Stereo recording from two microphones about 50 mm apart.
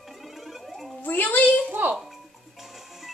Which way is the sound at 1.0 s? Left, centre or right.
Left.